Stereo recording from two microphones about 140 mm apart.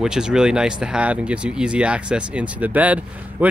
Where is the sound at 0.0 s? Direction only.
5° right (ahead or behind).